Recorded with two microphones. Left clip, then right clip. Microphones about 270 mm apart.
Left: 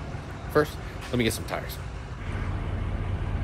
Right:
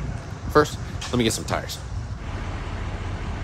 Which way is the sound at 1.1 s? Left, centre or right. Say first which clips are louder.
Right 4 dB; centre.